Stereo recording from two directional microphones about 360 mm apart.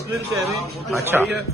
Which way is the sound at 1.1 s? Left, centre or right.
Centre.